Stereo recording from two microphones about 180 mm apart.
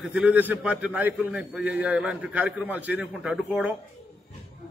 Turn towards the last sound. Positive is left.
turn(degrees=-5)  # may be behind; listen again after turning